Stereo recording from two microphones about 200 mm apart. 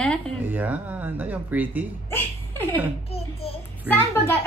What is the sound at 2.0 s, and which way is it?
Speech, 10° left (ahead or behind).